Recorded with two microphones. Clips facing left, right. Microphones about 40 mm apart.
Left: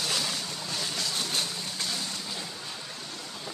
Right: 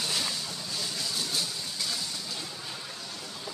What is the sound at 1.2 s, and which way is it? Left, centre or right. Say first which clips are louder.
Vehicle: left 1 dB; left.